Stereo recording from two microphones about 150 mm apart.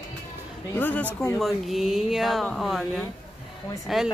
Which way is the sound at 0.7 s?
10° left (ahead or behind).